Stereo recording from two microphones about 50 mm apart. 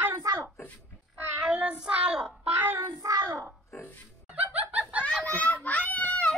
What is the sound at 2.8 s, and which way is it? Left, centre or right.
Child singing, right.